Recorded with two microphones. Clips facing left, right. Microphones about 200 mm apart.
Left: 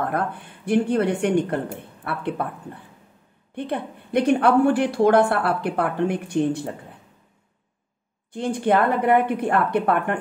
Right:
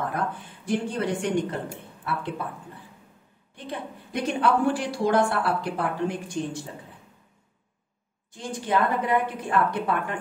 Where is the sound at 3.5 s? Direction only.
60° left (ahead or behind).